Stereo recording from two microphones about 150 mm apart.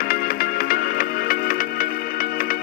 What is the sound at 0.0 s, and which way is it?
Music, 75° left (ahead or behind).